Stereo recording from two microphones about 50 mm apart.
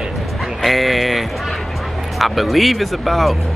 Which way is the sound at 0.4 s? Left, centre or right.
Centre.